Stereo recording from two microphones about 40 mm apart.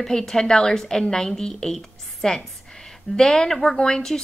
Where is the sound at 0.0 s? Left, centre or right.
Centre.